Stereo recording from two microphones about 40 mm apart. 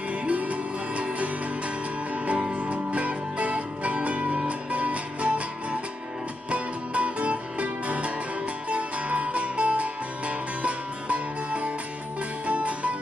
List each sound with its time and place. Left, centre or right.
0.1 s music: right
2.5 s music: right